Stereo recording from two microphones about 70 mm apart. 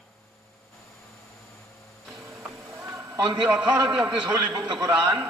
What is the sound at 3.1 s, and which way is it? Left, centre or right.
Speech, right.